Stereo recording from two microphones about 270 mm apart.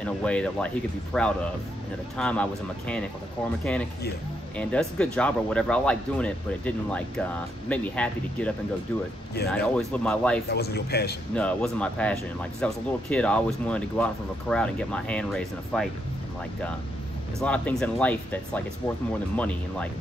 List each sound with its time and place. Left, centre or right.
0.0 s speech: centre
3.7 s speech: centre
10.5 s speech: left
11.3 s speech: centre
17.4 s speech: centre